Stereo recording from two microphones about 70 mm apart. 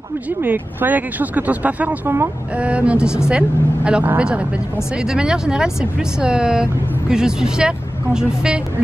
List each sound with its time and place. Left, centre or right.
0.4 s speech: right; by 8.6 s centre